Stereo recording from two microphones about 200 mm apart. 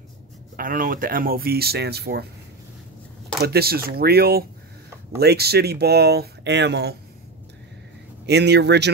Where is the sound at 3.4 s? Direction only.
50° right (ahead or behind).